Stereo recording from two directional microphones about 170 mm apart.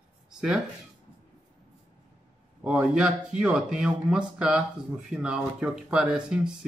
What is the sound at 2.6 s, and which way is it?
Speech, 5° right (ahead or behind).